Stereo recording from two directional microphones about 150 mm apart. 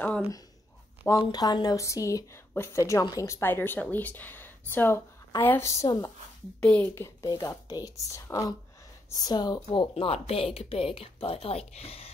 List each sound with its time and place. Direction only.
1.0 s a woman's voice: 25° left (ahead or behind)
6.6 s a woman's voice: 10° left (ahead or behind); by 9.7 s 25° left (ahead or behind)
9.7 s speech: 40° left (ahead or behind)